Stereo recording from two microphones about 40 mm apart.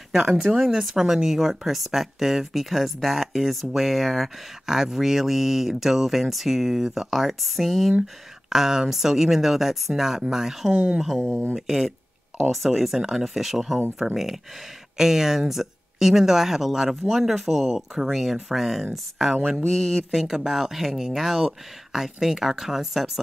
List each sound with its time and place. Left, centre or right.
0.7 s speech: centre
10.7 s speech: right
11.0 s speech: centre
20.1 s speech: centre